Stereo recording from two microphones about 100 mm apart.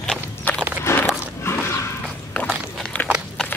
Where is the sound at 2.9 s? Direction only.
15° left (ahead or behind).